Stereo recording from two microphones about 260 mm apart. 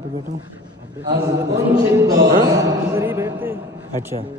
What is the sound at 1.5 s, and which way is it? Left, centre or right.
A man's voice, centre.